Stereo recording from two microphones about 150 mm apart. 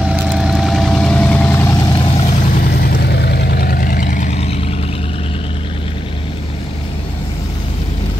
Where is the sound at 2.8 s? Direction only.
90° left; by 4.6 s 45° left (ahead or behind).